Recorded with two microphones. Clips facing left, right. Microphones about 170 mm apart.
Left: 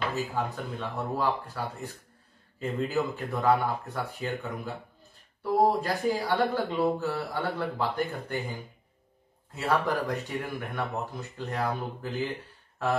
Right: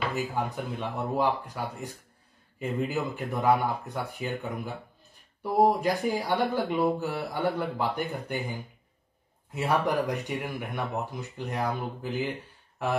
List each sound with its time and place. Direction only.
0.4 s speech: 15° right (ahead or behind)